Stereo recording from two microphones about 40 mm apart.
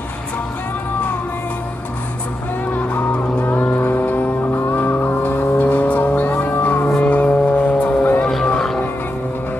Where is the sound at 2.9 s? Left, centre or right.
Left.